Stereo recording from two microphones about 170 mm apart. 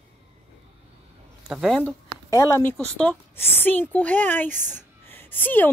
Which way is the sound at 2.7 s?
5° left (ahead or behind).